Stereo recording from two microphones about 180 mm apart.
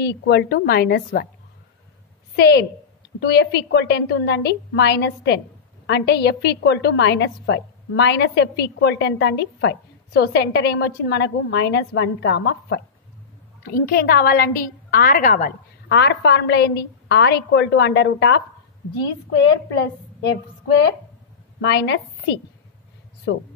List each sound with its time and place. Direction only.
0.3 s a woman's voice: 65° left (ahead or behind)
2.3 s a woman's voice: 65° left (ahead or behind)
13.7 s a woman's voice: 55° left (ahead or behind)
15.9 s a woman's voice: 70° left (ahead or behind)
21.5 s a woman's voice: 70° left (ahead or behind)
23.3 s speech: 85° left